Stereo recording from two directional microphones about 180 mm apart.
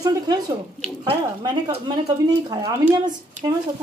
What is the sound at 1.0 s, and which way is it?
Speech, 25° right (ahead or behind).